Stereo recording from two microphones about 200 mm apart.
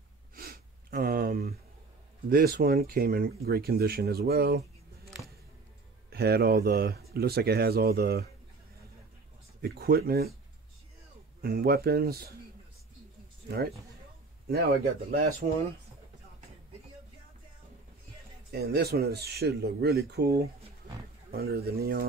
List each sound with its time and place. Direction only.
0.4 s sniff: 50° right (ahead or behind)
2.2 s speech: 45° right (ahead or behind)
6.0 s speech: 50° right (ahead or behind)
9.6 s speech: 50° right (ahead or behind)
11.4 s speech: 50° right (ahead or behind)
13.5 s speech: 50° right (ahead or behind)
18.5 s speech: 55° right (ahead or behind)